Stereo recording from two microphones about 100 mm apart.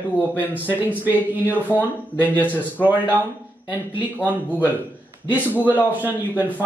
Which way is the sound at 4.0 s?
15° right (ahead or behind).